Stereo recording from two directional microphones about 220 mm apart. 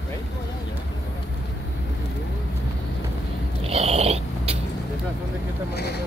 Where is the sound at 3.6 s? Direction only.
30° right (ahead or behind).